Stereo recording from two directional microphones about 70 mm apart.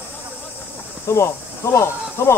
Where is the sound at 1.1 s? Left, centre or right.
Left.